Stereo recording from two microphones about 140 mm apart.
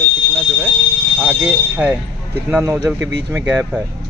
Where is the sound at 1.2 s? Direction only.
10° right (ahead or behind).